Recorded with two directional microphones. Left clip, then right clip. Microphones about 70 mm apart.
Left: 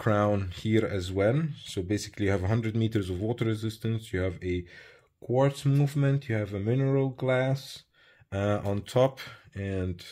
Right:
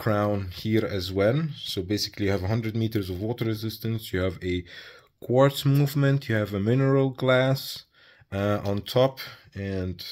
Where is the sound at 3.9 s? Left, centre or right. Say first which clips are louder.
Right 6 dB; right.